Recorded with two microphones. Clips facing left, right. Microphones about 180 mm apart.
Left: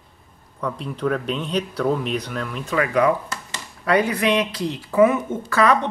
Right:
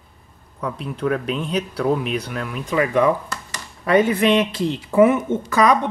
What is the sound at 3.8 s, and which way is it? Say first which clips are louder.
A woman's voice: right 3 dB; 25° right (ahead or behind).